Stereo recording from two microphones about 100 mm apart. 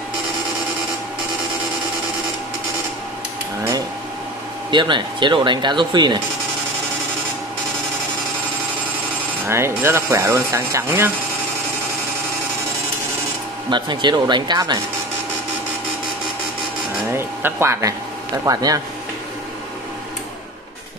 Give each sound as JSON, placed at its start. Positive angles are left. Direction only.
{"t": 4.6, "sound": "speech", "side_deg": -55}
{"t": 9.5, "sound": "speech", "side_deg": -25}
{"t": 13.7, "sound": "speech", "side_deg": -50}
{"t": 17.1, "sound": "speech", "side_deg": -25}